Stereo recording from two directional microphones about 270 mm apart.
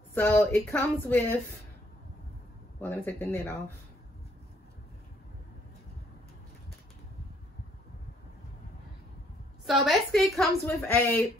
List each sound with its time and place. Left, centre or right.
0.1 s speech: centre
2.8 s speech: centre
9.7 s a woman's voice: centre